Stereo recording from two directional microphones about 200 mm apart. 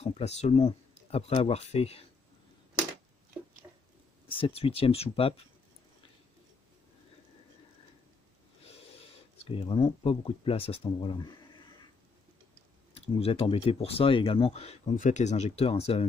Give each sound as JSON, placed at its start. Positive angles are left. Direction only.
{"t": 0.0, "sound": "speech", "side_deg": 35}
{"t": 4.3, "sound": "speech", "side_deg": 30}
{"t": 9.4, "sound": "speech", "side_deg": 25}
{"t": 12.9, "sound": "speech", "side_deg": 30}